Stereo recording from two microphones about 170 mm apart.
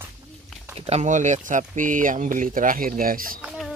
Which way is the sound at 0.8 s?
40° right (ahead or behind).